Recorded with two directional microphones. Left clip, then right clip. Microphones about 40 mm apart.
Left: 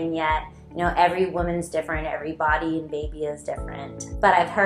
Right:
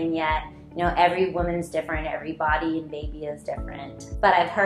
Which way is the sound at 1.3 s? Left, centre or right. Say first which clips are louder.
Even; left.